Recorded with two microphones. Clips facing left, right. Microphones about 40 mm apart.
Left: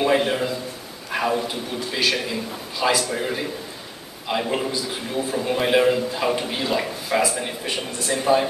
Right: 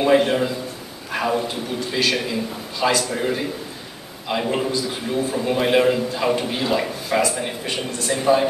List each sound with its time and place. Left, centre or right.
0.0 s a man's voice: centre